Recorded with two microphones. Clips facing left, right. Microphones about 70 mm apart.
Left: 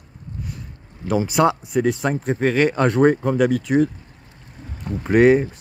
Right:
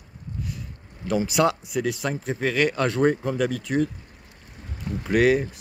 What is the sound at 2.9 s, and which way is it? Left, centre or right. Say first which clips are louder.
Speech: left 5 dB; left.